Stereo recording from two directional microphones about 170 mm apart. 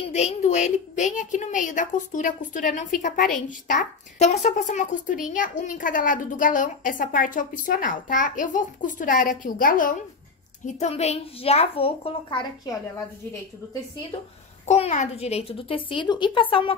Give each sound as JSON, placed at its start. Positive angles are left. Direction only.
{"t": 0.1, "sound": "speech", "side_deg": 40}
{"t": 10.6, "sound": "a child's voice", "side_deg": 40}
{"t": 14.7, "sound": "a child's voice", "side_deg": 40}